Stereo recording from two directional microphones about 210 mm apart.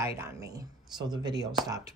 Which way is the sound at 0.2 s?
15° right (ahead or behind).